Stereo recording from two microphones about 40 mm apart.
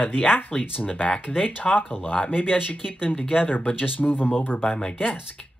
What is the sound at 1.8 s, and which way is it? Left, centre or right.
Speech, left.